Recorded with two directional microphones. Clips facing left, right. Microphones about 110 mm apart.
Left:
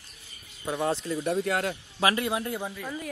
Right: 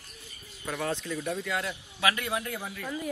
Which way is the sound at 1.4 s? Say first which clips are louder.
Left 5 dB; 50° left (ahead or behind).